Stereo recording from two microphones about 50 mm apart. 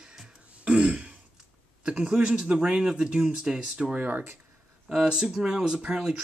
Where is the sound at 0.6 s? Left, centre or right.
Right.